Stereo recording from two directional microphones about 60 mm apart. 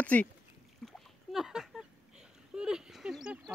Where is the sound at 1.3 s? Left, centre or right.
Centre.